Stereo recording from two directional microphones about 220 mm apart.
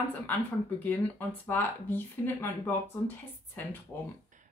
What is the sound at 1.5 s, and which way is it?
Speech, 10° left (ahead or behind).